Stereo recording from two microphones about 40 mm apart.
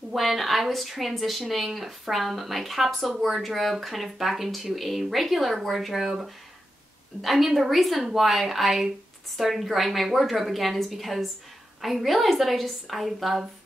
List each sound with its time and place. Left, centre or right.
0.1 s speech: centre
7.2 s speech: centre